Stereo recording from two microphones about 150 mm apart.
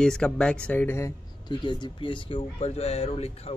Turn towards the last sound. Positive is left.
turn(degrees=40)  # may be behind; listen again after turning